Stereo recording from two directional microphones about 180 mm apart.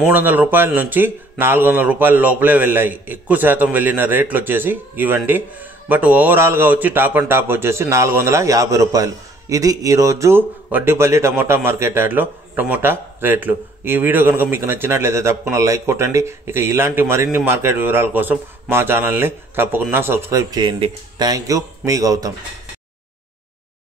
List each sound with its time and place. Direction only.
0.0 s a man's voice: 10° right (ahead or behind)